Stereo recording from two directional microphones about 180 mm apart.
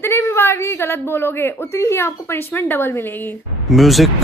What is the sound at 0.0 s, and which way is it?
A woman's voice, 15° left (ahead or behind).